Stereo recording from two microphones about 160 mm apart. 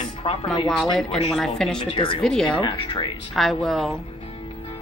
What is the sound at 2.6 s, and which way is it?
Speech, 30° left (ahead or behind).